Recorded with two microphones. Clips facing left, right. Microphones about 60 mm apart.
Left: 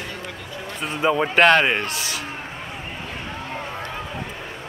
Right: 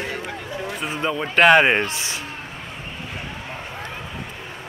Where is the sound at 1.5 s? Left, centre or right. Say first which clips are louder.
Right 3 dB; right.